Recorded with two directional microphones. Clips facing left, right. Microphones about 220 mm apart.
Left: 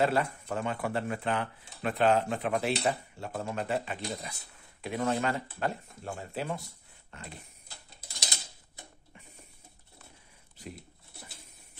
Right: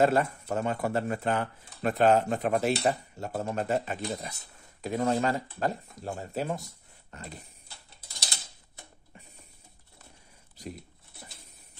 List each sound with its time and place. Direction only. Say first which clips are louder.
0.0 s speech: right 4 dB; 45° right (ahead or behind)